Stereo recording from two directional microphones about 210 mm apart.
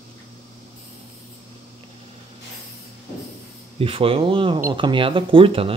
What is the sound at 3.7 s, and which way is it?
Speech, 25° right (ahead or behind).